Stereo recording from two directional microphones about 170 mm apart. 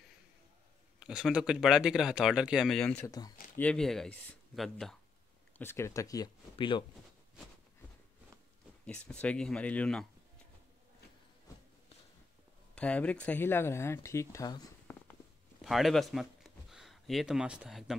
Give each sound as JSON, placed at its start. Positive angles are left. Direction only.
{"t": 0.9, "sound": "speech", "side_deg": -5}
{"t": 3.1, "sound": "speech", "side_deg": 20}
{"t": 3.5, "sound": "speech", "side_deg": 5}
{"t": 5.6, "sound": "speech", "side_deg": 15}
{"t": 8.8, "sound": "speech", "side_deg": 5}
{"t": 12.7, "sound": "speech", "side_deg": 5}
{"t": 15.6, "sound": "speech", "side_deg": 0}